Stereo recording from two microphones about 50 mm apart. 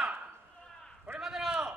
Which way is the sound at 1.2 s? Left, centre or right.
Centre.